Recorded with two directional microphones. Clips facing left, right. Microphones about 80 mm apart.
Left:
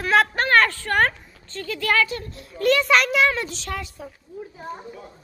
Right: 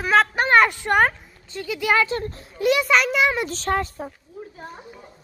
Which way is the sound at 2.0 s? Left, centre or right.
Right.